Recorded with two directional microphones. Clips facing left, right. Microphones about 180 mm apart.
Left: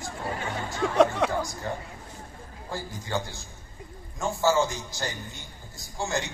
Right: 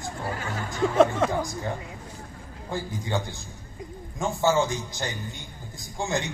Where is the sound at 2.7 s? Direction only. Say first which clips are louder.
Right 3 dB; 15° right (ahead or behind).